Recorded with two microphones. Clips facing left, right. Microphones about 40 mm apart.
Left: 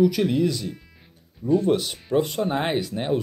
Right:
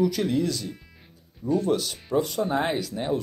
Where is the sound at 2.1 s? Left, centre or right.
Left.